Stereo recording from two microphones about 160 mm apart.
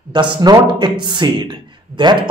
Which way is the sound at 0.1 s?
25° right (ahead or behind).